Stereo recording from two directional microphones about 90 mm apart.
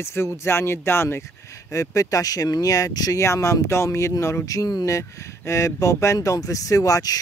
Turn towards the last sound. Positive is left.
turn(degrees=40)  # may be behind; listen again after turning